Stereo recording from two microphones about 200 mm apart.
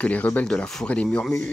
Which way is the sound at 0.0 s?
5° left (ahead or behind).